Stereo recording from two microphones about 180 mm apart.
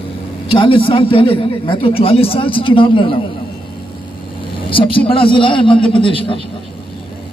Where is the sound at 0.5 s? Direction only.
30° left (ahead or behind).